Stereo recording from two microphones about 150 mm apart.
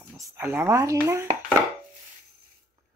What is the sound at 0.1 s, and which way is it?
Speech, 20° right (ahead or behind).